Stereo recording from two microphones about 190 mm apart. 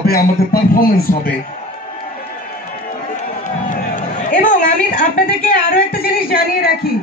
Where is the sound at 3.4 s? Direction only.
40° left (ahead or behind).